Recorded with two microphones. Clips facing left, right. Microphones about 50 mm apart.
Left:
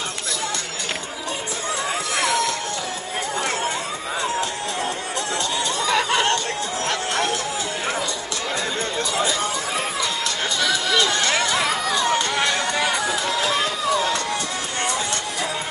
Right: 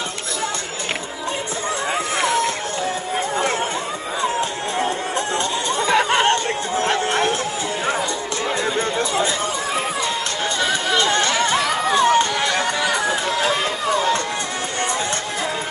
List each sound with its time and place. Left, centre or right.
4.4 s run: right
5.8 s chatter: right
8.9 s chatter: right
10.6 s chatter: right